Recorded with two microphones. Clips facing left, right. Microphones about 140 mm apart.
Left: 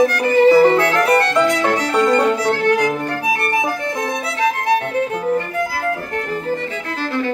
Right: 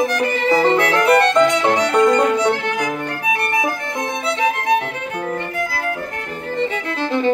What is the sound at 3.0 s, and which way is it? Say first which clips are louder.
Violin: left 2 dB; 35° left (ahead or behind).